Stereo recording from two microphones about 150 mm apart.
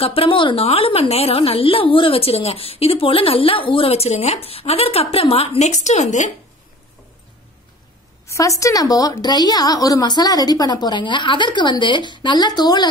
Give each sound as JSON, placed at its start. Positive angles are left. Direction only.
{"t": 0.0, "sound": "a woman's voice", "side_deg": 40}
{"t": 8.3, "sound": "a woman's voice", "side_deg": 20}